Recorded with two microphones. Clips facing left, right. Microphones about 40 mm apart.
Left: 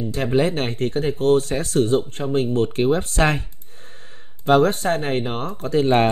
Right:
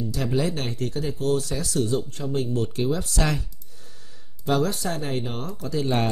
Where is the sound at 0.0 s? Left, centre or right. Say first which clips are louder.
Left 5 dB; left.